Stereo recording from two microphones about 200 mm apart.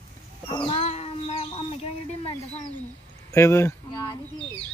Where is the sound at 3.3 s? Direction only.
15° left (ahead or behind).